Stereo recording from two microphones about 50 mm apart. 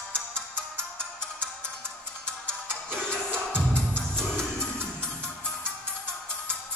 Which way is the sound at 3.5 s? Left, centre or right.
Centre.